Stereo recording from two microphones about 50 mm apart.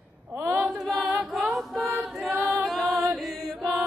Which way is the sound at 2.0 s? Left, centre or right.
Centre.